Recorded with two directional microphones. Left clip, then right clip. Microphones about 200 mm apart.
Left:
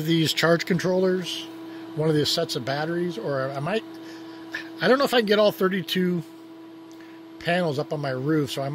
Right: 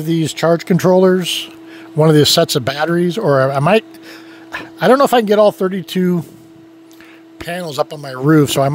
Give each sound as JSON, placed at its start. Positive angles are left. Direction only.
{"t": 0.0, "sound": "speech", "side_deg": -35}
{"t": 0.7, "sound": "speech", "side_deg": -50}
{"t": 4.5, "sound": "speech", "side_deg": -45}
{"t": 7.4, "sound": "speech", "side_deg": 0}
{"t": 8.1, "sound": "speech", "side_deg": -65}